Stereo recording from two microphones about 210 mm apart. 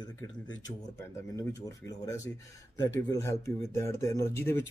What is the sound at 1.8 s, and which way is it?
Speech, 15° left (ahead or behind).